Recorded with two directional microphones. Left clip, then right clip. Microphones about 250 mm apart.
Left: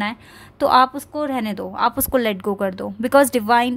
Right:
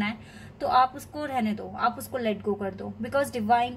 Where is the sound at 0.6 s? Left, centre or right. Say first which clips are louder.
Left 8 dB; left.